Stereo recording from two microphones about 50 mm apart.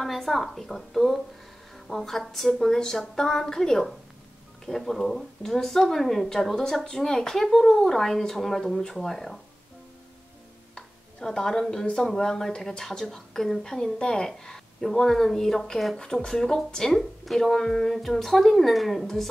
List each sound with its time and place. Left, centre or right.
0.0 s a woman's voice: centre
10.7 s a sound: centre
11.7 s a woman's voice: centre